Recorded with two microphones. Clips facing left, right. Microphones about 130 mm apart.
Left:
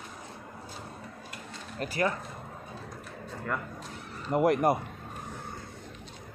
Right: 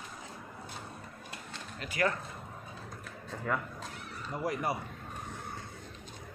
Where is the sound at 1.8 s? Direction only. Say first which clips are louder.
Left 10 dB; 45° left (ahead or behind).